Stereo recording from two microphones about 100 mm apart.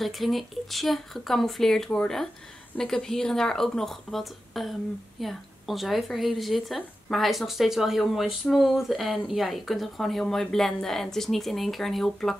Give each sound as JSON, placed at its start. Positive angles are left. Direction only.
{"t": 0.0, "sound": "speech", "side_deg": 0}